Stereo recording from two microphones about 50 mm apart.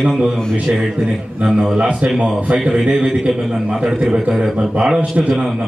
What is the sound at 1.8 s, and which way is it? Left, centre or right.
Speech, right.